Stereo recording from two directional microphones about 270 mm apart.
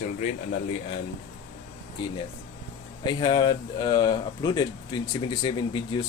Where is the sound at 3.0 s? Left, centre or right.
Centre.